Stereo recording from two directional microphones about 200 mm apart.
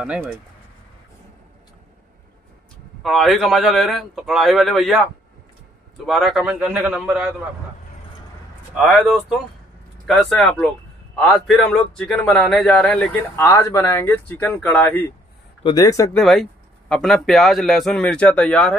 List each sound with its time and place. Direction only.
0.0 s speech: 5° right (ahead or behind)
3.0 s a man's voice: centre (ahead or behind)
6.0 s a man's voice: centre (ahead or behind)
8.7 s a man's voice: centre (ahead or behind)
15.6 s speech: 20° left (ahead or behind)
16.2 s a man's voice: centre (ahead or behind)